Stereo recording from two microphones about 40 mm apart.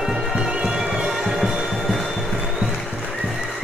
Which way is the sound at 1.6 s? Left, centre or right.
Centre.